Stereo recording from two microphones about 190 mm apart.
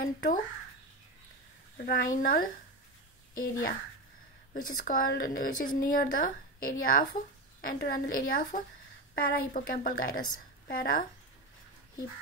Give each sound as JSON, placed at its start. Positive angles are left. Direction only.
{"t": 0.0, "sound": "speech", "side_deg": 50}
{"t": 1.8, "sound": "speech", "side_deg": 50}